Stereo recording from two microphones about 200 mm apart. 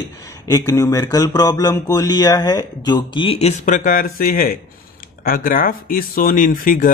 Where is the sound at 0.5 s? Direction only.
15° left (ahead or behind).